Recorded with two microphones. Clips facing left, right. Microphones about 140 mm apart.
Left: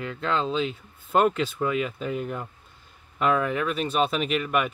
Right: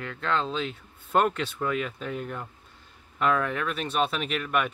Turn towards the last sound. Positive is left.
turn(degrees=5)  # may be behind; listen again after turning